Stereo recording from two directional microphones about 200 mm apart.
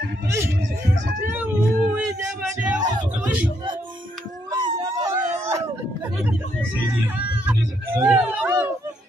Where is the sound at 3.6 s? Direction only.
25° right (ahead or behind).